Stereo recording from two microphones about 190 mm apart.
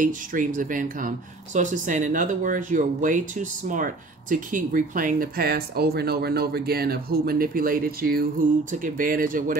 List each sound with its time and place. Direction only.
0.0 s speech: 45° right (ahead or behind)